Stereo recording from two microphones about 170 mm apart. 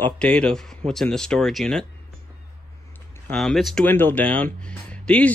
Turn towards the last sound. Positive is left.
turn(degrees=5)  # may be behind; listen again after turning